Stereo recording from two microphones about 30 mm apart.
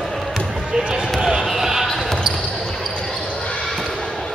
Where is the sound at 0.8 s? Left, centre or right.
Right; by 1.8 s centre.